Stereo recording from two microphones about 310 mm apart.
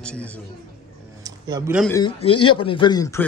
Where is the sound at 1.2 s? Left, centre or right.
Centre.